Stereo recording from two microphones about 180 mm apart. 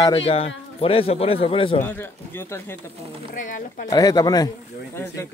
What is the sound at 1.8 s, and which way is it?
Speech, 10° left (ahead or behind).